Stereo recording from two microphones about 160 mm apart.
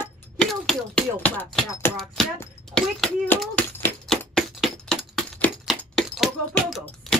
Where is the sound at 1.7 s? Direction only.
15° left (ahead or behind).